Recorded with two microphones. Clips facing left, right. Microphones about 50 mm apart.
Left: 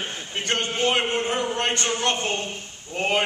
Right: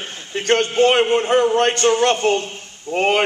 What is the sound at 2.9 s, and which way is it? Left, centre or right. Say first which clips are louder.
Speech: right 6 dB; right.